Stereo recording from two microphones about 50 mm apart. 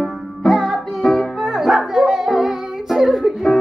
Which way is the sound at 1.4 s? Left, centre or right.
Centre.